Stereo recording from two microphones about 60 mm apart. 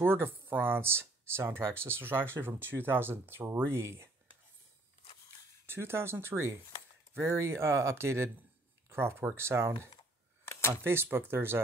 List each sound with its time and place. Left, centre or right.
0.0 s speech: right
5.7 s speech: right
10.4 s a sound: left
10.9 s speech: right